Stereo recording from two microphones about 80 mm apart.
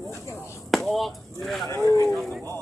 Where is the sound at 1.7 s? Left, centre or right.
Left.